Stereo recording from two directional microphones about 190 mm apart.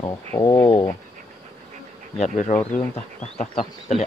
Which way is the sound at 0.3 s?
20° left (ahead or behind).